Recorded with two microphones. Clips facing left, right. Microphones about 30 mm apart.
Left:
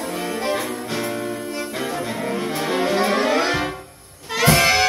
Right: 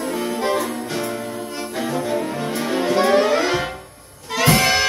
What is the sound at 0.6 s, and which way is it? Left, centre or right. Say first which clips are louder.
Music: right 2 dB; centre.